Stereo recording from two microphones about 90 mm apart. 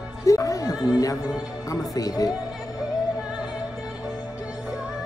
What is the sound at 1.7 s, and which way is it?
Speech, 40° left (ahead or behind).